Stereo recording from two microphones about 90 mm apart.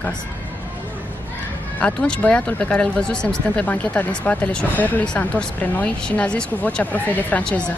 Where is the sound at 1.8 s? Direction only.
15° left (ahead or behind).